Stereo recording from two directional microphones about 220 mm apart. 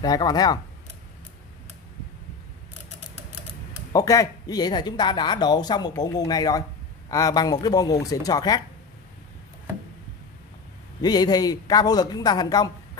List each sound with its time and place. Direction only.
0.0 s speech: 15° left (ahead or behind)
3.9 s speech: 15° left (ahead or behind)
11.0 s speech: 20° left (ahead or behind)